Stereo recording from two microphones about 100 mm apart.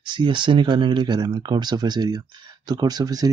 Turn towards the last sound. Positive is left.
turn(degrees=-40)  # may be behind; listen again after turning